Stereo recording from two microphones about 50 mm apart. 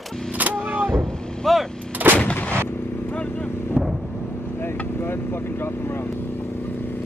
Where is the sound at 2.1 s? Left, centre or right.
Left.